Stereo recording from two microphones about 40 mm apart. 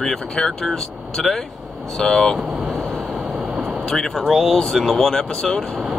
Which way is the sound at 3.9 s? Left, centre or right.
Centre.